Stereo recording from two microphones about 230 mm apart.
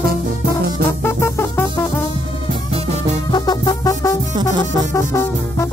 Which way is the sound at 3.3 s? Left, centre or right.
Centre.